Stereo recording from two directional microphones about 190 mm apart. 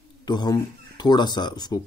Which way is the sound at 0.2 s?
20° left (ahead or behind).